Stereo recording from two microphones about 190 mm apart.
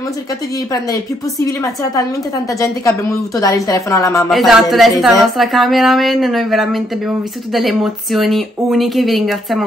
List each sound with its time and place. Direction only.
1.4 s a woman's voice: 15° left (ahead or behind)
4.3 s a woman's voice: centre (ahead or behind)